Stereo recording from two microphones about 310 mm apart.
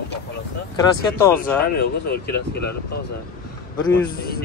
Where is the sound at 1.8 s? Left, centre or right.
Left.